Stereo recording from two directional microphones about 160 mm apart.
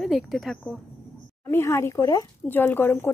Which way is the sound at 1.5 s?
15° left (ahead or behind).